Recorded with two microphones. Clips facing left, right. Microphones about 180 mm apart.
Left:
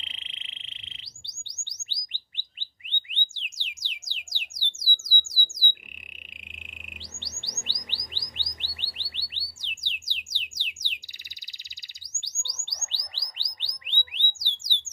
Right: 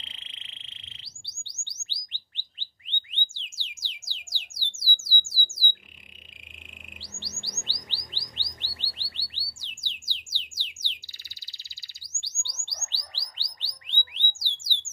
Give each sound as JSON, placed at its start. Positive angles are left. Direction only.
{"t": 0.0, "sound": "frog", "side_deg": 20}
{"t": 1.6, "sound": "bird", "side_deg": 15}
{"t": 2.9, "sound": "music", "side_deg": 15}
{"t": 6.9, "sound": "bird", "side_deg": 20}
{"t": 8.1, "sound": "chirp", "side_deg": 15}
{"t": 8.7, "sound": "music", "side_deg": 20}
{"t": 12.1, "sound": "bird", "side_deg": 15}